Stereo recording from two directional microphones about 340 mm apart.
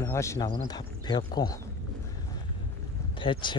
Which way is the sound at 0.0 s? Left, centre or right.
Centre.